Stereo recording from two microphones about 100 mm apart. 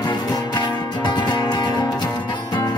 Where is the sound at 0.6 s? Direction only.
50° left (ahead or behind).